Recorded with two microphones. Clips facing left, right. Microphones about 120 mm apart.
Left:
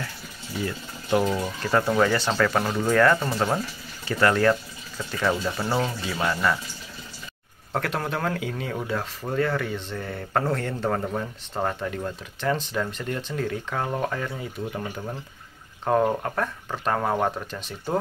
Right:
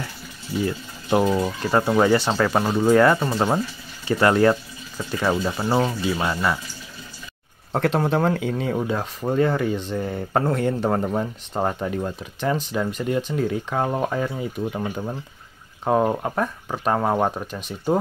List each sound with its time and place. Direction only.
1.7 s speech: 20° right (ahead or behind)
5.9 s speech: 15° right (ahead or behind)
7.7 s speech: 25° right (ahead or behind)